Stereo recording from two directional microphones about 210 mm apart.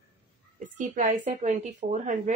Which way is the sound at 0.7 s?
35° right (ahead or behind).